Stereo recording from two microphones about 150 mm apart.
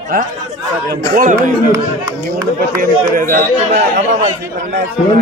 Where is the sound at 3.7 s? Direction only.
50° right (ahead or behind).